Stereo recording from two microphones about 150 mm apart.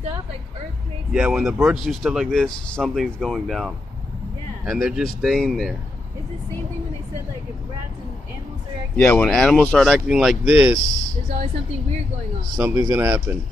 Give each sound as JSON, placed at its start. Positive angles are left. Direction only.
{"t": 1.1, "sound": "speech", "side_deg": -5}
{"t": 8.9, "sound": "speech", "side_deg": 10}
{"t": 9.3, "sound": "speech", "side_deg": 0}
{"t": 12.5, "sound": "speech", "side_deg": -20}